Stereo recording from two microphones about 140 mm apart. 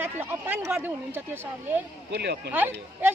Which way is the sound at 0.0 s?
15° right (ahead or behind).